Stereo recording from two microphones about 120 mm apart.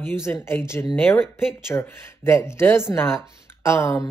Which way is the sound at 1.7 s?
20° left (ahead or behind).